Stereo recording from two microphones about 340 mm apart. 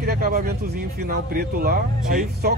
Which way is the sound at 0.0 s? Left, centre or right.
Right.